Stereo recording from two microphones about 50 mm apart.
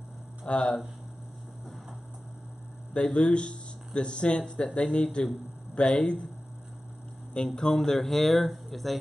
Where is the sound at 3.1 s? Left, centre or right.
Centre.